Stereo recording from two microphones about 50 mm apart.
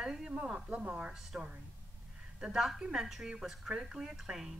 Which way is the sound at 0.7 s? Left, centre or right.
Right.